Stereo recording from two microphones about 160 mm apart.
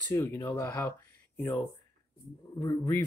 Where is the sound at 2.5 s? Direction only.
25° left (ahead or behind).